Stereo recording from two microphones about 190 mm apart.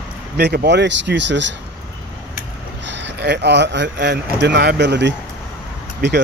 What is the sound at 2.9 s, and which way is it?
Speech, 70° right (ahead or behind).